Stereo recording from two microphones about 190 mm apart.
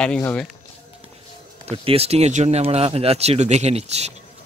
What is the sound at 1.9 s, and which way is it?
Speech, 30° right (ahead or behind).